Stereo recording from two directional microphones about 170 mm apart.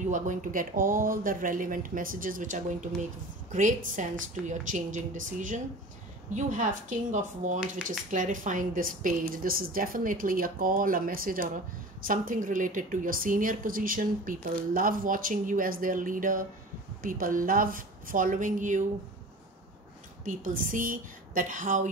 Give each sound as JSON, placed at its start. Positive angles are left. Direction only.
{"t": 0.1, "sound": "a woman's voice", "side_deg": -50}
{"t": 20.2, "sound": "a woman's voice", "side_deg": -50}